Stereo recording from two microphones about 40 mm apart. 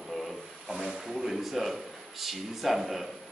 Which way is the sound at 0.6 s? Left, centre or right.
Centre.